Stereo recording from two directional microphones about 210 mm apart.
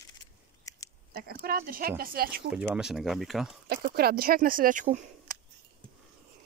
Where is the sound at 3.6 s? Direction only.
45° right (ahead or behind).